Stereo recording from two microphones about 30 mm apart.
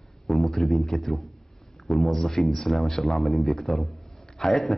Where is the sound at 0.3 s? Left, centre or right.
Centre.